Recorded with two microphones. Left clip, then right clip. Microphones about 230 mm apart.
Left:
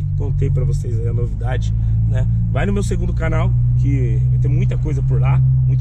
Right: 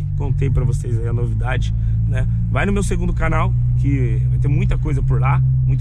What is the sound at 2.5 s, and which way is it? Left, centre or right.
Speech, right.